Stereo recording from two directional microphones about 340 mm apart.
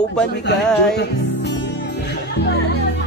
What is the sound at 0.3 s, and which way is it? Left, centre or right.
Speech, left.